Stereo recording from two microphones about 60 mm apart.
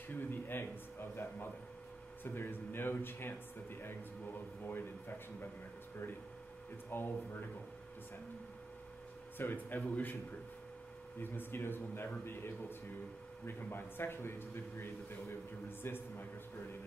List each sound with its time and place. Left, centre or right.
0.1 s speech: left
2.2 s speech: left
6.9 s speech: left
9.4 s speech: left
11.1 s speech: left